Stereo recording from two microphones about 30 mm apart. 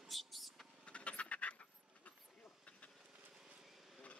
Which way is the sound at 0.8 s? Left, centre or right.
Left.